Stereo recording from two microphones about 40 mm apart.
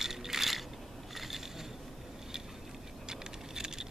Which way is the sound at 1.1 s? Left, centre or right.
Centre.